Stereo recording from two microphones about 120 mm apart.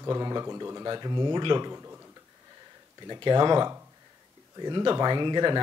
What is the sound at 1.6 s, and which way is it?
Speech, 25° right (ahead or behind).